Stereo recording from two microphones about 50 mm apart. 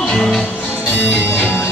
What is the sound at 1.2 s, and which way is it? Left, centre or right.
Music, left.